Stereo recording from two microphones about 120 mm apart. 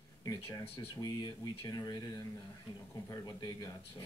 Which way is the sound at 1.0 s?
40° left (ahead or behind).